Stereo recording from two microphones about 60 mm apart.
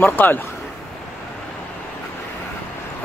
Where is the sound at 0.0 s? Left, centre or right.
Left.